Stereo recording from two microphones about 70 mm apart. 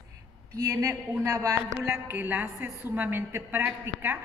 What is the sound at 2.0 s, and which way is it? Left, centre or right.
A woman's voice, right.